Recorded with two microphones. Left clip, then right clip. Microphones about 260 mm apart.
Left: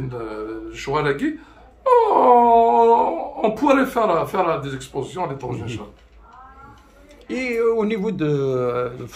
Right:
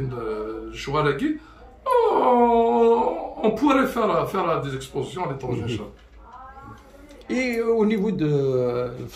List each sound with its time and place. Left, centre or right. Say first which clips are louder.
0.7 s speech: left 2 dB; centre
7.2 s speech: left 3 dB; centre